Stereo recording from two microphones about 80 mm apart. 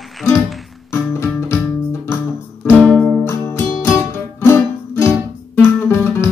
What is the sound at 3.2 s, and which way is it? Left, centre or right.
Music, left.